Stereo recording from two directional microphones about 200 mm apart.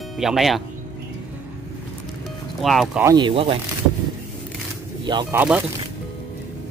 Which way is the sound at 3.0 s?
20° right (ahead or behind).